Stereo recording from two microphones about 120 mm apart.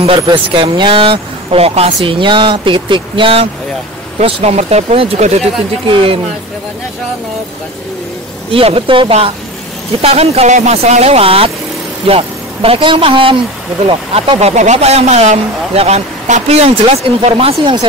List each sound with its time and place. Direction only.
0.0 s speech: 45° right (ahead or behind)
2.0 s speech: 45° right (ahead or behind)
4.2 s speech: 65° right (ahead or behind)
5.9 s speech: 50° right (ahead or behind)
8.5 s speech: 50° right (ahead or behind)